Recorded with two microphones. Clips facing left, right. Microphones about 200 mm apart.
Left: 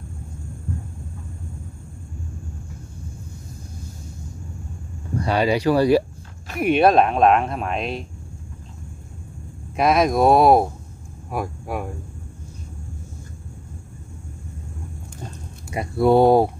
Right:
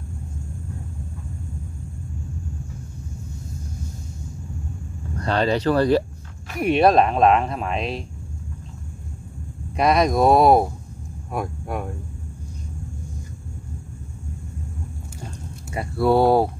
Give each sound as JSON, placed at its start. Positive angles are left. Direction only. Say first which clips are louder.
{"t": 5.1, "sound": "speech", "louder": "left 1 dB", "side_deg": 10}
{"t": 9.8, "sound": "speech", "louder": "left 1 dB", "side_deg": 0}
{"t": 15.7, "sound": "speech", "louder": "left 2 dB", "side_deg": 15}